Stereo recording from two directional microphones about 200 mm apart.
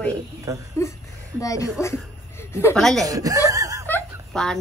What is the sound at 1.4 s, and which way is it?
Speech, 15° left (ahead or behind).